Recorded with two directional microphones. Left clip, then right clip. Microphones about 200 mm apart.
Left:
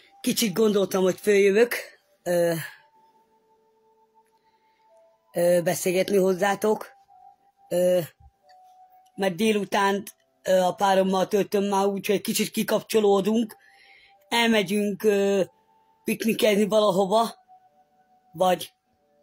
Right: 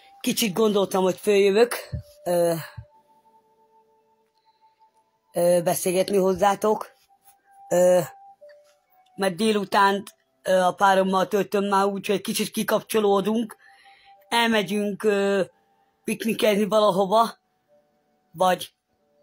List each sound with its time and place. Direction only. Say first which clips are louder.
0.0 s speech: right 1 dB; 10° left (ahead or behind)
5.3 s speech: right 1 dB; 10° left (ahead or behind)
9.1 s speech: right 1 dB; 10° left (ahead or behind)